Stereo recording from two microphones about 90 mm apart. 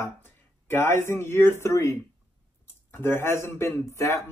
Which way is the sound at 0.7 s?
25° left (ahead or behind).